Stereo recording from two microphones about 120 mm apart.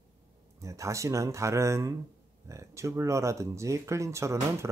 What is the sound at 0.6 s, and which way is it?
Speech, 25° right (ahead or behind).